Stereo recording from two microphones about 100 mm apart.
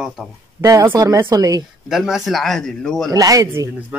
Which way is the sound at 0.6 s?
30° right (ahead or behind).